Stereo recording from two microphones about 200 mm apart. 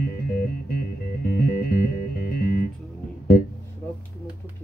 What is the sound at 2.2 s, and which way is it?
Music, 50° left (ahead or behind).